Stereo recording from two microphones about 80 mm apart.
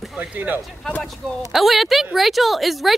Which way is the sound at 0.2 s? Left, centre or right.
Centre.